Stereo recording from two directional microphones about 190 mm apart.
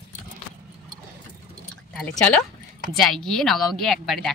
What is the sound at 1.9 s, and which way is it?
Speech, centre (ahead or behind).